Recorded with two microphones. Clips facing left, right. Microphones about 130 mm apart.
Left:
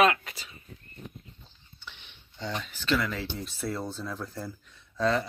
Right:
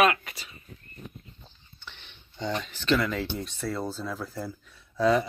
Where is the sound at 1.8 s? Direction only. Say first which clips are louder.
Even; 10° left (ahead or behind).